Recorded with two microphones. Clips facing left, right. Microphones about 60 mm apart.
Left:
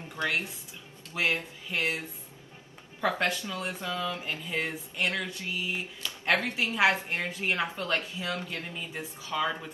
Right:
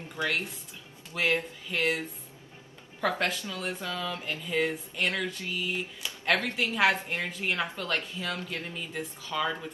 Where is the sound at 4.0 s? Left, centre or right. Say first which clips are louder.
Left 1 dB; centre.